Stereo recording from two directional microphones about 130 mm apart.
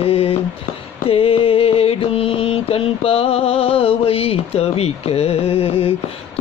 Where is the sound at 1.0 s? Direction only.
45° left (ahead or behind).